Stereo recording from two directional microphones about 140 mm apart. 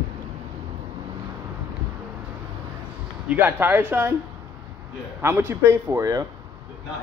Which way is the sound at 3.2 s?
15° right (ahead or behind).